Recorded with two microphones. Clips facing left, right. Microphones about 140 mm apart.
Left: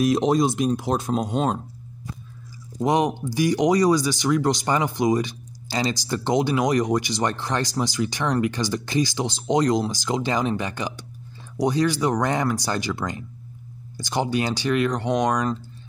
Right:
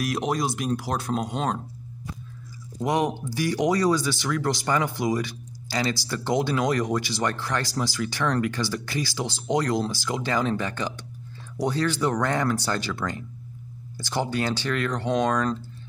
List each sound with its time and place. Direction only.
0.0 s speech: 25° left (ahead or behind)
2.8 s speech: 20° left (ahead or behind)